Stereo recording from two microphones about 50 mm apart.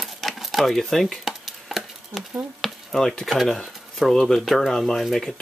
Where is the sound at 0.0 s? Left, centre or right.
Centre.